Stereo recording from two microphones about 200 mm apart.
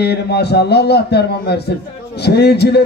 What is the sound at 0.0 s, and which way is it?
A man's voice, 55° left (ahead or behind).